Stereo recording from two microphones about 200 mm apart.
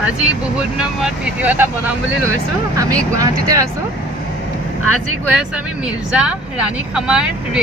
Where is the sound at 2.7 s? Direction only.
15° right (ahead or behind).